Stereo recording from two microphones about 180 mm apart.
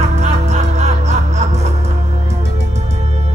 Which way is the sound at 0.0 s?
40° right (ahead or behind).